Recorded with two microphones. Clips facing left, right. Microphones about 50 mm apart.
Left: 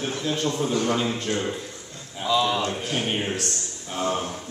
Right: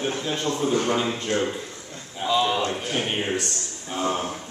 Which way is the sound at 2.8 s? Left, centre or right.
Centre.